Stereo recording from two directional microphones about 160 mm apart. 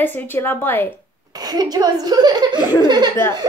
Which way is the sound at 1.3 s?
25° right (ahead or behind).